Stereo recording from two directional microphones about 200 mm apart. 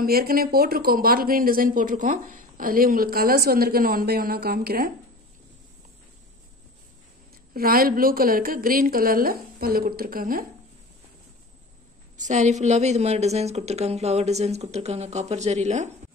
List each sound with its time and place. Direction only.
0.0 s speech: 50° right (ahead or behind)
7.5 s speech: 50° right (ahead or behind)
12.2 s a woman's voice: 40° right (ahead or behind)